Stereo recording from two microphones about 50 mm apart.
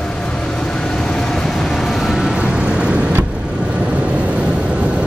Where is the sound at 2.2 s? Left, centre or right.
Centre.